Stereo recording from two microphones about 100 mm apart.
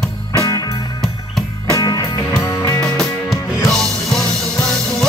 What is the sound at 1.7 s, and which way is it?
Music, 35° left (ahead or behind).